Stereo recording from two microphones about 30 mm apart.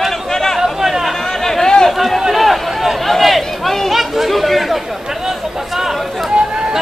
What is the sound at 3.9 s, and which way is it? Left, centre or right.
Chatter, centre.